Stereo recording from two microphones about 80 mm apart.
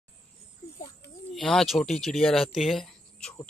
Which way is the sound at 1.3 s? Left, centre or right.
Centre.